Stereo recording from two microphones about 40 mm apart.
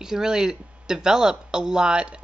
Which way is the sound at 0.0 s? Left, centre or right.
Centre.